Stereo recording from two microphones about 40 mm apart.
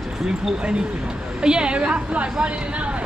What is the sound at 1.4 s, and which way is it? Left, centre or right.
A woman's voice, right.